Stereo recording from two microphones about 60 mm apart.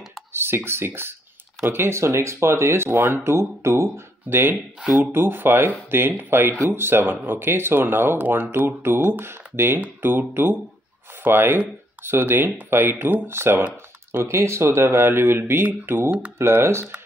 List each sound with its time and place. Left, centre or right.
0.3 s speech: right
3.3 s speech: right